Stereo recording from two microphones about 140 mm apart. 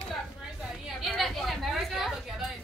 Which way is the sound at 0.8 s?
Centre (ahead or behind).